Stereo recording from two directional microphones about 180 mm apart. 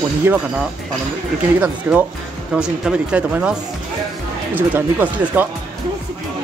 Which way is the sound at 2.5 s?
5° right (ahead or behind).